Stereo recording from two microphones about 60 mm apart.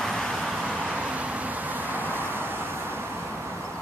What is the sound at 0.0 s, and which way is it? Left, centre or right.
Vehicle, centre.